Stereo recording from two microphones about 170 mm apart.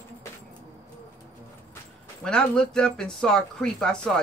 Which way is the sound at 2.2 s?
5° left (ahead or behind).